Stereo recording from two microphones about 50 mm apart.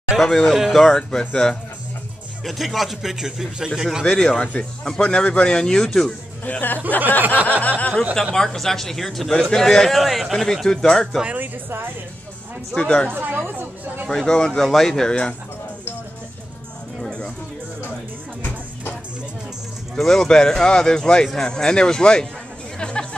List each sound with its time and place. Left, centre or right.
0.1 s speech: centre
0.8 s speech: centre
2.4 s a man's voice: centre
4.0 s speech: centre
4.4 s speech: left; by 6.1 s centre
6.4 s speech: left
8.4 s a man's voice: centre
11.2 s speech: right
12.7 s speech: left
13.1 s speech: right
13.5 s chatter: right
14.1 s speech: centre
20.0 s speech: centre